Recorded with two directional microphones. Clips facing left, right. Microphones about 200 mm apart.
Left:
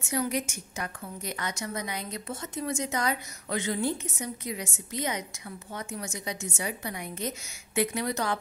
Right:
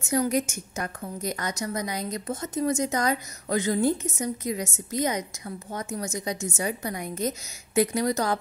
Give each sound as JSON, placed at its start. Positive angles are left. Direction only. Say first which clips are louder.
{"t": 0.0, "sound": "a woman's voice", "louder": "right 5 dB", "side_deg": -40}